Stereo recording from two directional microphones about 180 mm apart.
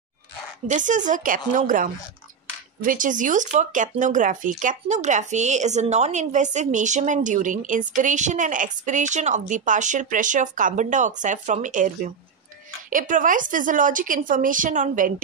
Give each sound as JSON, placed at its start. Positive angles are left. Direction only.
{"t": 0.7, "sound": "speech", "side_deg": -45}